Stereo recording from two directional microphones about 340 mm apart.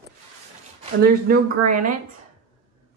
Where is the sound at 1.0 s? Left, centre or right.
Right.